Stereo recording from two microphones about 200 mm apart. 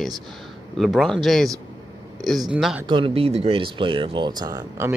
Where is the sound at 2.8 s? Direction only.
25° right (ahead or behind).